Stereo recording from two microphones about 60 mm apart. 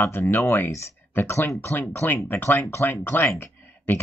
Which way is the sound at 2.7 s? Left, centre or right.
Left.